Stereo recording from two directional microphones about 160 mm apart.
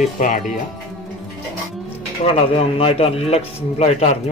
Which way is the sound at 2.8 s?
35° left (ahead or behind).